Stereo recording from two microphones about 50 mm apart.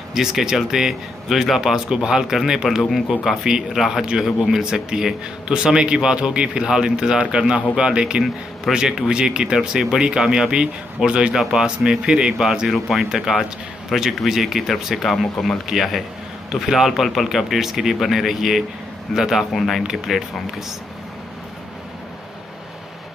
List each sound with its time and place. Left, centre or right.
0.1 s a man's voice: centre
19.5 s a man's voice: centre
19.9 s speech: centre